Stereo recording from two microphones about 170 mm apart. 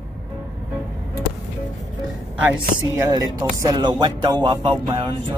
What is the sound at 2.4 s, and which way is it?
Speech, 10° right (ahead or behind).